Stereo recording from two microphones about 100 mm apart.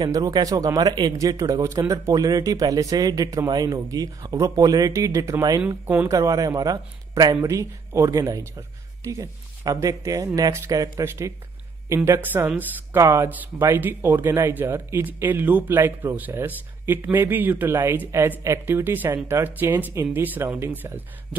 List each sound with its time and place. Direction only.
0.0 s speech: 40° right (ahead or behind); by 21.4 s 20° right (ahead or behind)